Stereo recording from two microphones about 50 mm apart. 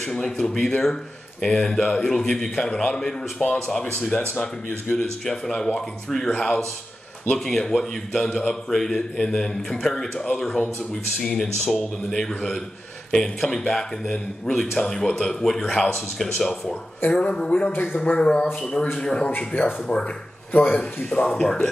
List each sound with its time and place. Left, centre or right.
0.2 s a man's voice: centre
3.8 s music: centre
4.9 s a man's voice: centre
6.3 s music: left
7.3 s a man's voice: centre
17.2 s music: centre
17.9 s a man's voice: centre
18.9 s music: centre
21.4 s a man's voice: centre